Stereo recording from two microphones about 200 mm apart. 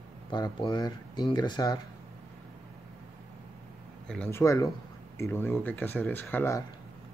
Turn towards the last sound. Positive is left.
turn(degrees=10)  # may be behind; listen again after turning